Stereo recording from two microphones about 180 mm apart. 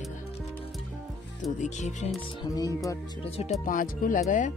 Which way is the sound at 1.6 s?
40° left (ahead or behind).